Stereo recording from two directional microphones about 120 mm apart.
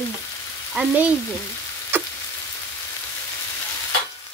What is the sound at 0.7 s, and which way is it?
Frying, 10° right (ahead or behind).